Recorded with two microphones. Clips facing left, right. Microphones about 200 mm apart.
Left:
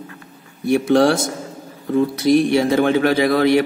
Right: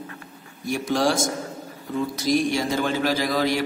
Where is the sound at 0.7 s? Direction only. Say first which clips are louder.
Left 8 dB; 60° left (ahead or behind).